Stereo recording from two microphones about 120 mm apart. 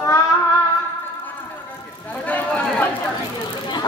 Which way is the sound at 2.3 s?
15° left (ahead or behind).